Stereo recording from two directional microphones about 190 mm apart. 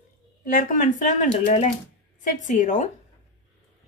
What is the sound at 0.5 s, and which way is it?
Speech, 45° left (ahead or behind).